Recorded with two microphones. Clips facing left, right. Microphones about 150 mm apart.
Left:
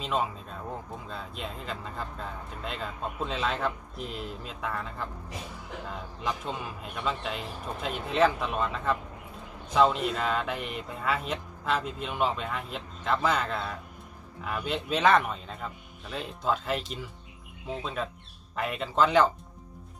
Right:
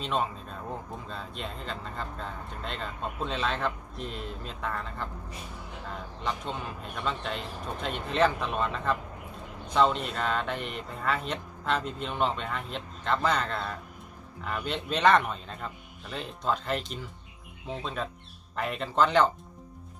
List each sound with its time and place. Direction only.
0.0 s speech: centre (ahead or behind)
6.2 s speech: 5° left (ahead or behind)